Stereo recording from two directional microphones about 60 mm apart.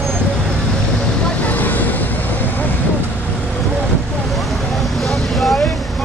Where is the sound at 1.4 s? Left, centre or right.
Left.